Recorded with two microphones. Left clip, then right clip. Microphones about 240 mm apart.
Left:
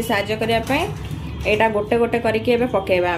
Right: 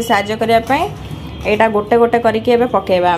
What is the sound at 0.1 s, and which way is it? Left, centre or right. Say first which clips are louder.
A woman's voice: right 7 dB; centre.